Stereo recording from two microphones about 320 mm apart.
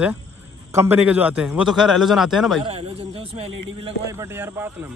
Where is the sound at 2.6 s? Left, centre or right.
Centre.